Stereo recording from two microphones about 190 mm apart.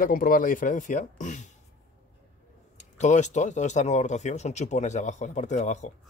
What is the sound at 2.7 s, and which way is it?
Speech, 40° left (ahead or behind).